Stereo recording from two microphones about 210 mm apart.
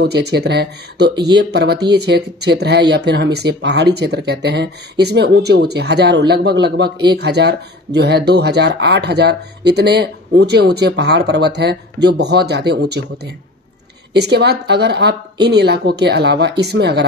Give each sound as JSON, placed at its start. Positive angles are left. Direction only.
{"t": 0.0, "sound": "speech", "side_deg": -50}
{"t": 14.1, "sound": "speech", "side_deg": -55}